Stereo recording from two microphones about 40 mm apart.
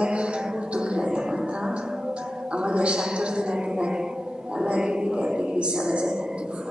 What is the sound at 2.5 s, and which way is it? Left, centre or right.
A woman's voice, right.